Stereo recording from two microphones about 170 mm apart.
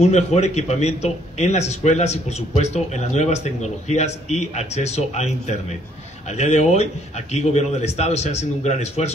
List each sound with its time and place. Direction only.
0.0 s a man's voice: 40° left (ahead or behind)